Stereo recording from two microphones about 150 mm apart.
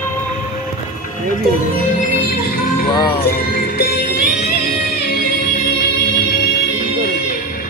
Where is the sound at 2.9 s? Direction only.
30° left (ahead or behind).